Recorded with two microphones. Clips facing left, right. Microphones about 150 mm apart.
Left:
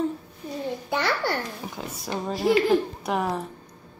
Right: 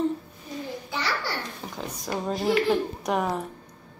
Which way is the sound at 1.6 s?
10° left (ahead or behind).